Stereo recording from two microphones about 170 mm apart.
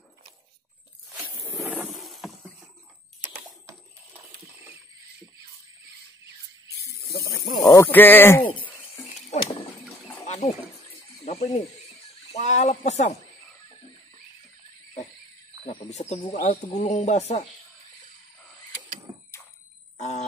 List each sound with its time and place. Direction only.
1.5 s a sound: 10° right (ahead or behind)
7.0 s snake: 65° left (ahead or behind)
7.6 s speech: 15° left (ahead or behind)
9.3 s vehicle: 45° left (ahead or behind)
10.1 s wild animals: 40° left (ahead or behind)
11.2 s a sound: 40° left (ahead or behind)
12.3 s speech: 45° left (ahead or behind)
15.6 s speech: 35° left (ahead or behind)
20.0 s music: 40° left (ahead or behind)